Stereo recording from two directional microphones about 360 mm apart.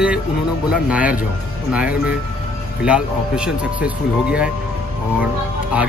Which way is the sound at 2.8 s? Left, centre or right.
Centre.